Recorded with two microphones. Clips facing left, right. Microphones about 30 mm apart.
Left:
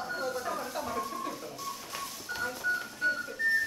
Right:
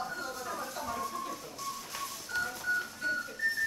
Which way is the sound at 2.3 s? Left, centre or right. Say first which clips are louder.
Left 1 dB; centre.